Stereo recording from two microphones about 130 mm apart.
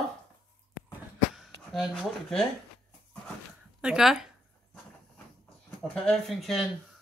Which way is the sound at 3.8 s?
5° right (ahead or behind).